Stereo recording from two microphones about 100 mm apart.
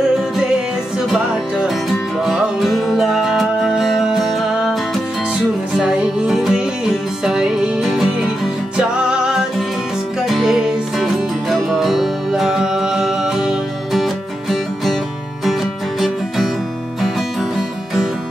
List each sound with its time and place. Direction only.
0.9 s music: 5° right (ahead or behind)
5.8 s music: 5° right (ahead or behind)
17.0 s music: centre (ahead or behind)